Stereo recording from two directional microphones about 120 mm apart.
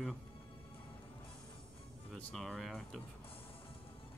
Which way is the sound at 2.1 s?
Centre (ahead or behind).